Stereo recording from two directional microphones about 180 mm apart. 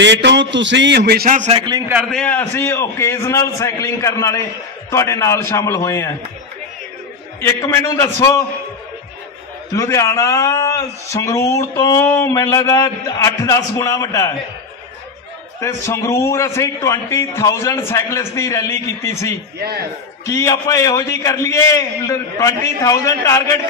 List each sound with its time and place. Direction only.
0.0 s a man's voice: 80° right; by 1.5 s 50° right (ahead or behind)
1.5 s a man's voice: 25° right (ahead or behind)
2.0 s speech: 5° left (ahead or behind)
7.3 s speech: 15° left (ahead or behind)
9.8 s speech: 15° left (ahead or behind)
15.6 s speech: 15° left (ahead or behind)